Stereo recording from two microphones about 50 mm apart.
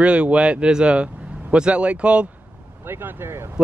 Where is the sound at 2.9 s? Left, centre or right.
Right.